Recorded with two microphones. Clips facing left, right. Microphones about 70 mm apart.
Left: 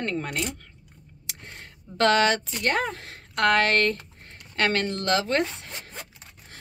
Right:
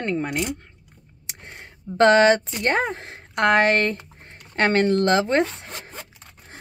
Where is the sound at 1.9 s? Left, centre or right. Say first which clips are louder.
Right 6 dB; right.